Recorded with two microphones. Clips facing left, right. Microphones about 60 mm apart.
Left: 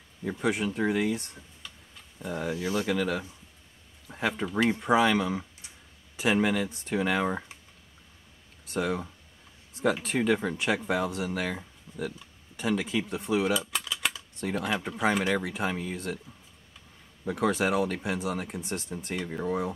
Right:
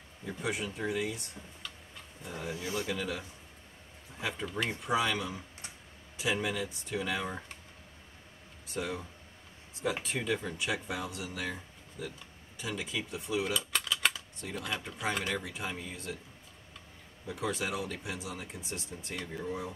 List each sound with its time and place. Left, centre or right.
0.2 s speech: left
2.2 s speech: left
8.6 s speech: left
10.0 s speech: left
13.7 s typing: centre
14.4 s speech: left
17.3 s speech: left